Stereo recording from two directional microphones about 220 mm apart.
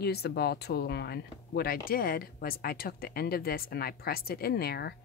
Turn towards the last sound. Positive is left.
turn(degrees=45)  # may be behind; listen again after turning